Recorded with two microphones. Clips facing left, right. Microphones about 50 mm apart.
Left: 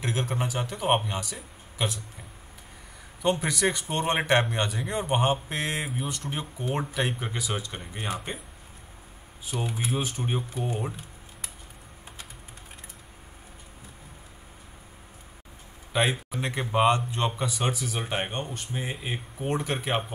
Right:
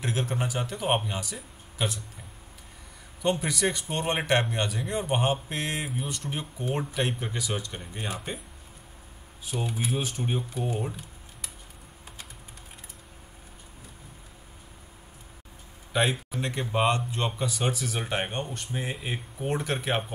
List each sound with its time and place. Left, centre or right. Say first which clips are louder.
0.0 s speech: even; centre
3.2 s speech: left 1 dB; centre
7.7 s speech: left 1 dB; centre
9.5 s speech: even; centre
9.8 s speech: even; centre
15.9 s speech: even; centre